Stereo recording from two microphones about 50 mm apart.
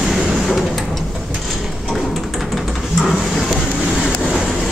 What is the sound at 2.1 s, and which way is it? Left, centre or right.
Printer, centre.